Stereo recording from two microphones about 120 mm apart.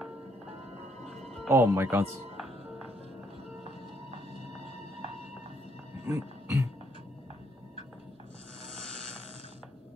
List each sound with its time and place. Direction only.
1.1 s music: 5° left (ahead or behind)
1.5 s speech: 20° right (ahead or behind)
6.0 s music: 25° right (ahead or behind)